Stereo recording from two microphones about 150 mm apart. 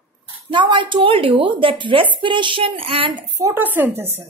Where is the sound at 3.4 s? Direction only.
15° right (ahead or behind).